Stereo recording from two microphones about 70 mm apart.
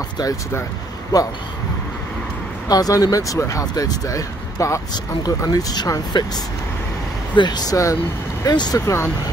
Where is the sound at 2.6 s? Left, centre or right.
Left.